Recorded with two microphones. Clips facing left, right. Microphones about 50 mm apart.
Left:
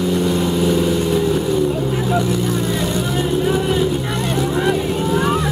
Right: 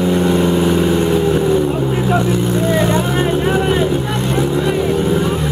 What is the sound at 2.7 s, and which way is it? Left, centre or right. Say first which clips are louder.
Vehicle: right 5 dB; right.